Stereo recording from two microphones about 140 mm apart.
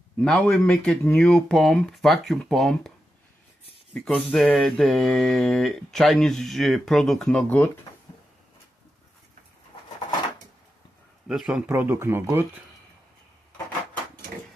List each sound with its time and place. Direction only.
0.2 s mantra: 5° left (ahead or behind)
3.9 s mantra: centre (ahead or behind)
11.2 s speech: 5° right (ahead or behind)